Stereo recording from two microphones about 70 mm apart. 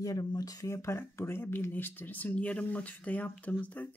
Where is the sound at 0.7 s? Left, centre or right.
Left.